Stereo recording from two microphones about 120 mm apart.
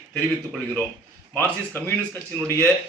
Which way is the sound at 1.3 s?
15° left (ahead or behind).